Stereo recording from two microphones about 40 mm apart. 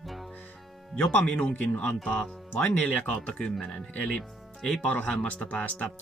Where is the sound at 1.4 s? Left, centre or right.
Left.